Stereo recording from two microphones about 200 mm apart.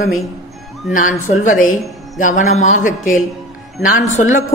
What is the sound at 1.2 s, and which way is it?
A man's voice, 40° left (ahead or behind).